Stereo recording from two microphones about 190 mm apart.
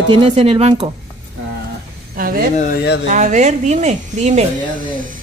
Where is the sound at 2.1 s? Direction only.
50° right (ahead or behind).